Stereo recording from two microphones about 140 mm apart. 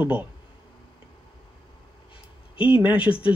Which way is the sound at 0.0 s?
10° right (ahead or behind).